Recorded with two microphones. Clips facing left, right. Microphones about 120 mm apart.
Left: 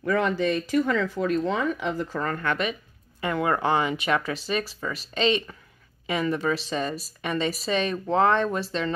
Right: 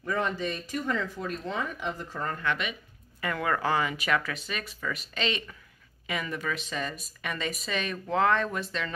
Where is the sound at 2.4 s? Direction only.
45° left (ahead or behind).